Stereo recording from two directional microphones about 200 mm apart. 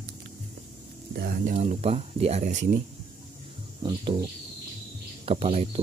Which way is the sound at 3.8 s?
25° right (ahead or behind).